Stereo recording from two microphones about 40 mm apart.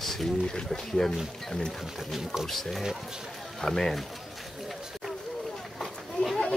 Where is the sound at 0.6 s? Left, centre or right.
Centre.